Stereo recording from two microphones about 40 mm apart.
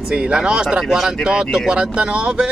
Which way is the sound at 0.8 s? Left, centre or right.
Centre.